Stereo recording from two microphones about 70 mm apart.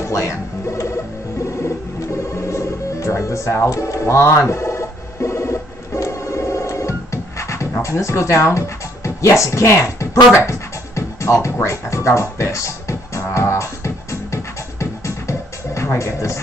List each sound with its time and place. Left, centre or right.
0.0 s music: left
2.3 s music: left
7.8 s speech: left
10.3 s music: left